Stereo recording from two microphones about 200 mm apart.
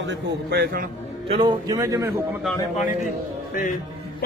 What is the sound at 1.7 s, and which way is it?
Speech, 15° right (ahead or behind).